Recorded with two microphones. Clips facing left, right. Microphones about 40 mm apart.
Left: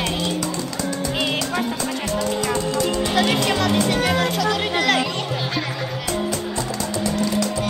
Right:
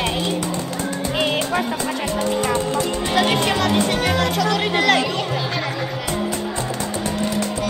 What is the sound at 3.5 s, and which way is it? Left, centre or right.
Speech, right.